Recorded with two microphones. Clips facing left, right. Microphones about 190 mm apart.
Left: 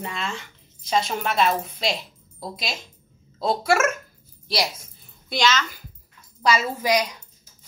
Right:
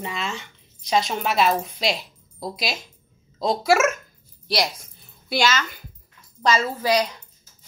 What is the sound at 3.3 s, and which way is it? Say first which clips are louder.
Speech: right 2 dB; centre (ahead or behind).